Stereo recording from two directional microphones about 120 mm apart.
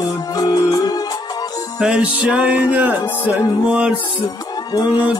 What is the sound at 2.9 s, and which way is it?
Music, 35° left (ahead or behind).